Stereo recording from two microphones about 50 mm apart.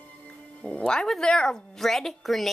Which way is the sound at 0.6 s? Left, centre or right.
Centre.